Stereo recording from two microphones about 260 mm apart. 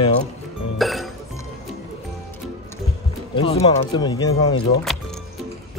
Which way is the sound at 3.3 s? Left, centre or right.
Left.